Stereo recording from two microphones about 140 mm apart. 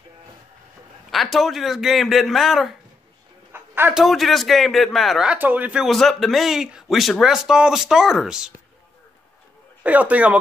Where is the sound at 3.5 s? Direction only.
15° right (ahead or behind).